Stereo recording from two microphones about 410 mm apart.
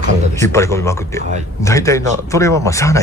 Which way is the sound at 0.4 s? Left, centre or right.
Centre.